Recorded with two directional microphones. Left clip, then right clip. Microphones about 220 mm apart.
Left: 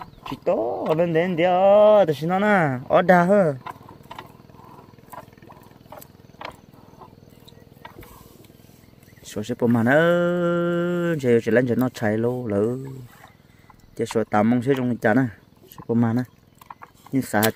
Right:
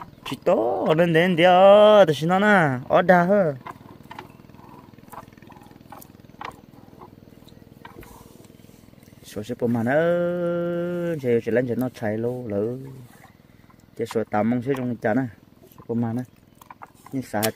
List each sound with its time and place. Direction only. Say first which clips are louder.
0.2 s speech: right 2 dB; 10° right (ahead or behind); by 3.7 s 10° left (ahead or behind)
9.2 s speech: left 3 dB; 10° left (ahead or behind)
13.9 s speech: left 3 dB; 10° left (ahead or behind)